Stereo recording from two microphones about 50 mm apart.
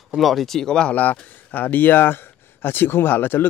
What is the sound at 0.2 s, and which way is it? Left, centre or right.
Speech, centre.